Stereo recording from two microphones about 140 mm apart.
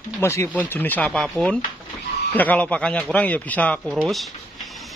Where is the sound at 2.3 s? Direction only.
10° left (ahead or behind).